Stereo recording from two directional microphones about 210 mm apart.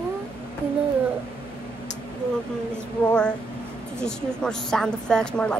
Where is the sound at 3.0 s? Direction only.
5° left (ahead or behind).